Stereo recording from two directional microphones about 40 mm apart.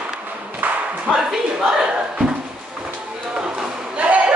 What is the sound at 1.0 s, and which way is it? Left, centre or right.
Speech, centre.